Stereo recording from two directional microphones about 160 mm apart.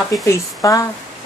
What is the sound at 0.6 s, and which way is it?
Speech, 20° left (ahead or behind).